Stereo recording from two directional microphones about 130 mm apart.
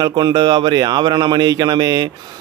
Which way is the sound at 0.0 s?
35° right (ahead or behind).